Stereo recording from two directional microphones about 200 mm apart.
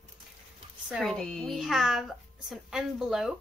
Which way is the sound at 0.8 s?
Centre (ahead or behind).